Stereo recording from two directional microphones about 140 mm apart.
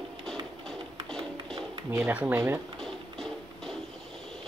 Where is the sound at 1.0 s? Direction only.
5° left (ahead or behind).